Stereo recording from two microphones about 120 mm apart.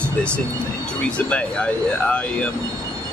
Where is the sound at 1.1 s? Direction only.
10° left (ahead or behind).